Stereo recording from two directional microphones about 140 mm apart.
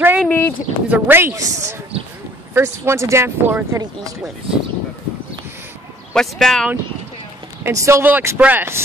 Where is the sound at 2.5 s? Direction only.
20° right (ahead or behind).